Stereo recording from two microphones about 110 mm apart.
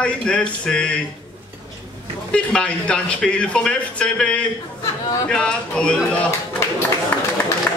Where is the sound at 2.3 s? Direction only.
10° left (ahead or behind).